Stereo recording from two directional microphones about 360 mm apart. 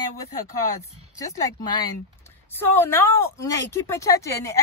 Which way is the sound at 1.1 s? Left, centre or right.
Centre.